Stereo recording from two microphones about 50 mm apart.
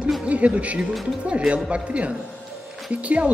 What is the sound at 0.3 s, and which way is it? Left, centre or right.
Speech, right.